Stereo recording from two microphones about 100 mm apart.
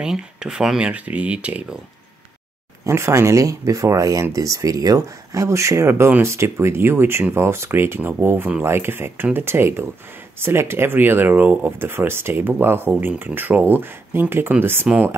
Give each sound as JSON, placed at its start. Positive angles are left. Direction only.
{"t": 0.0, "sound": "speech", "side_deg": -5}
{"t": 2.8, "sound": "speech", "side_deg": -25}